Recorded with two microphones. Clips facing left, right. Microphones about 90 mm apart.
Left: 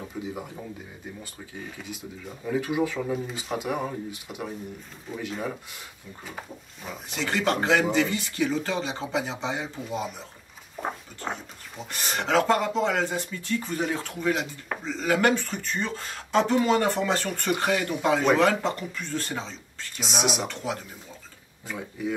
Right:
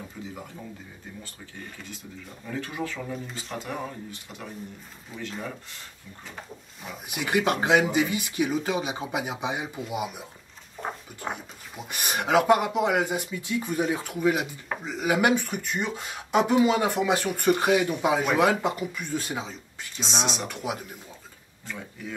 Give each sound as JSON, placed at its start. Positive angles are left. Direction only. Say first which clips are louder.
{"t": 0.2, "sound": "speech", "louder": "left 7 dB", "side_deg": 20}
{"t": 1.2, "sound": "speech", "louder": "left 3 dB", "side_deg": 5}
{"t": 7.1, "sound": "speech", "louder": "right 1 dB", "side_deg": -10}
{"t": 20.0, "sound": "speech", "louder": "left 2 dB", "side_deg": 10}
{"t": 20.4, "sound": "speech", "louder": "even", "side_deg": -10}
{"t": 21.6, "sound": "speech", "louder": "left 6 dB", "side_deg": 10}